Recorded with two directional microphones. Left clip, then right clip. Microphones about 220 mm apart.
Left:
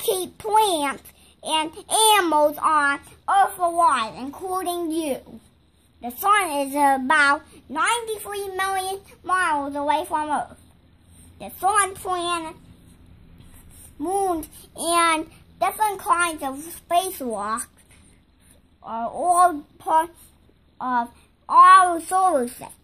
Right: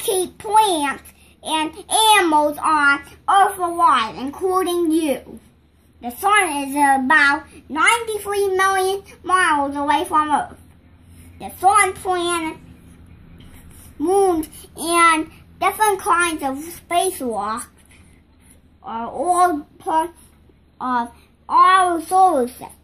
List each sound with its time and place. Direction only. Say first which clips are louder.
0.0 s a child's voice: right 3 dB; 45° left (ahead or behind)
14.0 s a child's voice: right 7 dB; 45° left (ahead or behind)
18.9 s a child's voice: right 1 dB; 45° left (ahead or behind)